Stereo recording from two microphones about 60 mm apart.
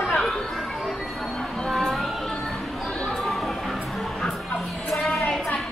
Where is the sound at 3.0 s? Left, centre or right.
Centre.